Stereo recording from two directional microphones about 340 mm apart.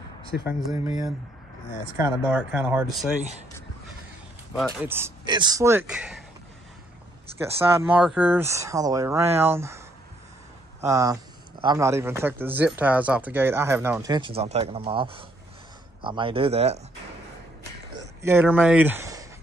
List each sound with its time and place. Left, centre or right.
0.5 s speech: centre
4.6 s speech: centre
7.8 s speech: centre
18.2 s speech: centre